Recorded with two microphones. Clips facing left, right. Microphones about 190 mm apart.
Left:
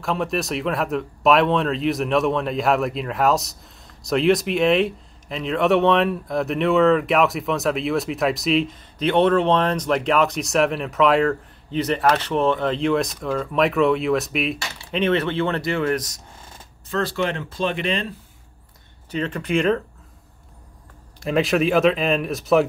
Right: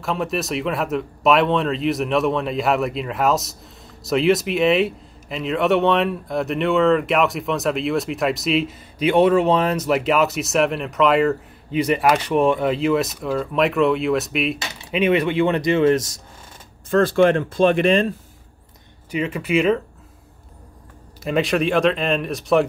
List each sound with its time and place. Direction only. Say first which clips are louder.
0.0 s a man's voice: even; centre (ahead or behind); by 16.2 s 25° right (ahead or behind)
16.9 s speech: right 8 dB; 50° right (ahead or behind)
19.0 s speech: right 2 dB; 10° right (ahead or behind)
21.2 s a man's voice: even; centre (ahead or behind)